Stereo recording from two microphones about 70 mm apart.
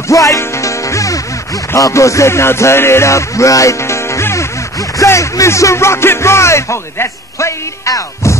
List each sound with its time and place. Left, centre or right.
0.1 s music: left